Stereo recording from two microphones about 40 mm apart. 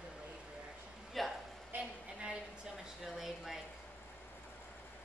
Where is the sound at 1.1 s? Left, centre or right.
Centre.